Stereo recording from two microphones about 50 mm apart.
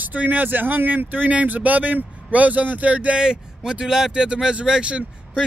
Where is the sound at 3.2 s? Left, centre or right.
Centre.